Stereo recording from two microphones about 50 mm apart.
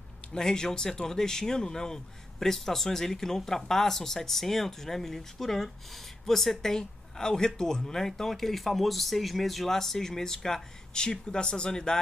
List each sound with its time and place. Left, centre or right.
0.3 s speech: centre